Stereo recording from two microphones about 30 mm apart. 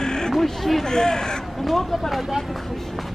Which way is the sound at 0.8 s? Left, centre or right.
Left.